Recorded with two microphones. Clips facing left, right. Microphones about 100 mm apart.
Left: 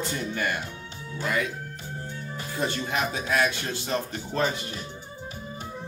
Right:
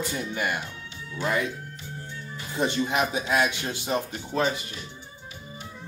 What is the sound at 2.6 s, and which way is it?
Speech, 20° right (ahead or behind).